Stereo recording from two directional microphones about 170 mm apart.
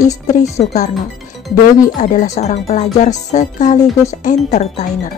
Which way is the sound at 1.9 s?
45° left (ahead or behind).